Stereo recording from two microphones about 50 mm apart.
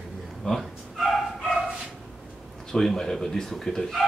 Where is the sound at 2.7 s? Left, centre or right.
Centre.